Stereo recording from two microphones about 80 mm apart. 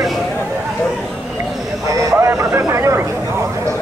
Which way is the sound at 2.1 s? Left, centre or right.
Right.